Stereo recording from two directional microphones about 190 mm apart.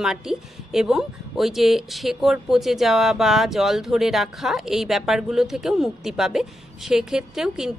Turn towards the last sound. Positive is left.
turn(degrees=0)  # may be behind; listen again after turning